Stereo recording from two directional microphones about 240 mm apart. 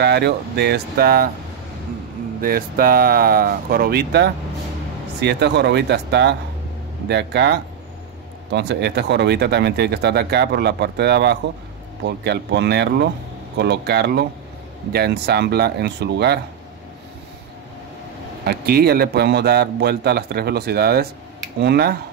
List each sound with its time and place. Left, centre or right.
0.0 s speech: right
2.4 s speech: right
18.4 s speech: right